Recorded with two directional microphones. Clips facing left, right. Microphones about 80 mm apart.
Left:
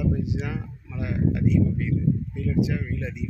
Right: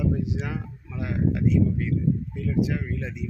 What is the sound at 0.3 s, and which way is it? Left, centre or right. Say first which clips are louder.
Speech: even; right.